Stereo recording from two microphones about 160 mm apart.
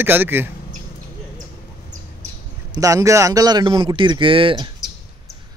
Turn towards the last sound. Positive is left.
turn(degrees=-30)  # may be behind; listen again after turning